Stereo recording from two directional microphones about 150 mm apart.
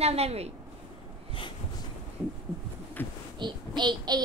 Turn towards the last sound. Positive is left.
turn(degrees=-30)  # may be behind; listen again after turning